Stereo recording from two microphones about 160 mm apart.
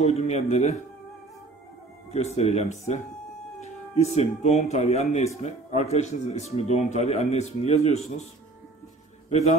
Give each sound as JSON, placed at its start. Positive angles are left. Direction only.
{"t": 0.0, "sound": "speech", "side_deg": 45}
{"t": 2.0, "sound": "speech", "side_deg": 45}